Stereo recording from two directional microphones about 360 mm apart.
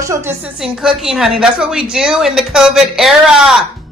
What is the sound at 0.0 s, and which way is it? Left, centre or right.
Speech, centre.